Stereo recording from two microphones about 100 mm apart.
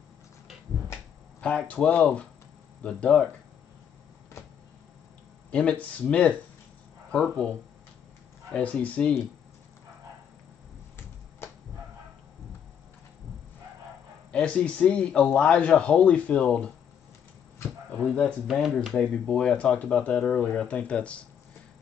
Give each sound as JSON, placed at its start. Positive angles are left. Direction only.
{"t": 1.4, "sound": "speech", "side_deg": 15}
{"t": 5.5, "sound": "speech", "side_deg": 10}
{"t": 11.4, "sound": "a sound", "side_deg": 25}
{"t": 14.3, "sound": "speech", "side_deg": 10}
{"t": 18.0, "sound": "speech", "side_deg": 10}